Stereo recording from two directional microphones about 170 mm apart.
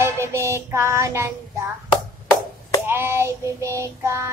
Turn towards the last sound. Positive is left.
turn(degrees=-15)  # may be behind; listen again after turning